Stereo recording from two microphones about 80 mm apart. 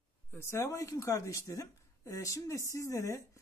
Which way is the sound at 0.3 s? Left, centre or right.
Left.